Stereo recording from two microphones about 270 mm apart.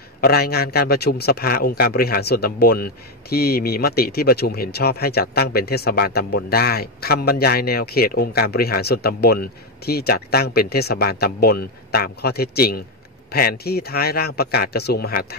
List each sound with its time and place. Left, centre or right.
0.2 s a man's voice: left